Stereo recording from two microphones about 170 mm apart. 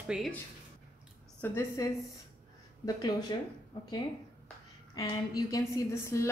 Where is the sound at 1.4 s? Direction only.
15° left (ahead or behind).